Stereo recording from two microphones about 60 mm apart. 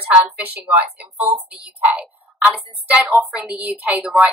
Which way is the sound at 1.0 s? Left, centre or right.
Right.